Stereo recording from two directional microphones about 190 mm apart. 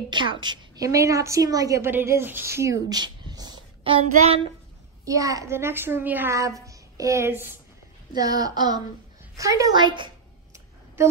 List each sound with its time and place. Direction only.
0.1 s a woman's voice: 25° right (ahead or behind)
4.1 s child singing: 35° right (ahead or behind)
5.0 s a child's voice: 15° right (ahead or behind)
8.2 s a sound: 20° right (ahead or behind)
9.4 s a woman's voice: 15° right (ahead or behind)